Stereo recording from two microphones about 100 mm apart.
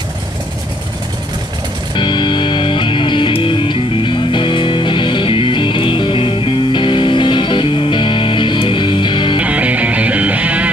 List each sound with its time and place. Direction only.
2.0 s music: 55° left (ahead or behind)
9.4 s music: 15° right (ahead or behind)